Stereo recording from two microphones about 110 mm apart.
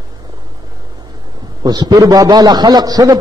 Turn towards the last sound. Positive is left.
turn(degrees=-35)  # may be behind; listen again after turning